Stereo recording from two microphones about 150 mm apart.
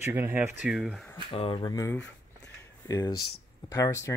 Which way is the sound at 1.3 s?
40° left (ahead or behind).